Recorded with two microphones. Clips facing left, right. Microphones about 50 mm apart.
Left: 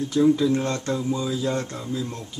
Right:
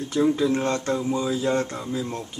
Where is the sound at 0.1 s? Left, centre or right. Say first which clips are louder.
Left 2 dB; centre.